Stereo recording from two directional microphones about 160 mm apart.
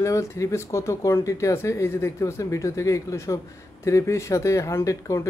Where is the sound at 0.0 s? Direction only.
20° left (ahead or behind).